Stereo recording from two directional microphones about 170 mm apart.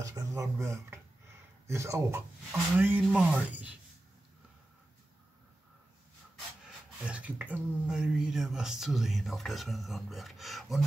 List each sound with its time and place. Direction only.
0.0 s speech: 20° right (ahead or behind)
7.1 s speech: 5° right (ahead or behind)